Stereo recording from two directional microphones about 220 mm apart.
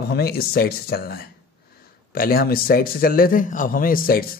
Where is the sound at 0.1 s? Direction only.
45° left (ahead or behind).